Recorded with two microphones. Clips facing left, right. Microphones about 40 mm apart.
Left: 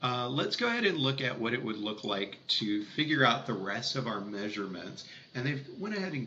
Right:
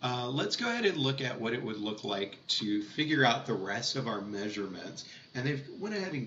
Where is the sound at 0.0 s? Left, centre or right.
Centre.